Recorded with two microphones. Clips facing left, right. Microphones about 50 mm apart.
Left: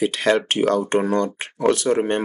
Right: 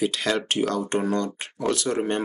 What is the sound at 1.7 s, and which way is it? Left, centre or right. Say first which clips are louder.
Speech: left 5 dB; left.